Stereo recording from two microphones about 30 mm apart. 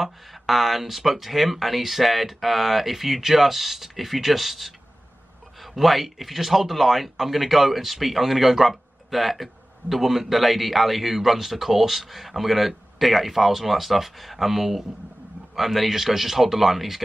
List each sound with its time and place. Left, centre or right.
0.0 s speech: centre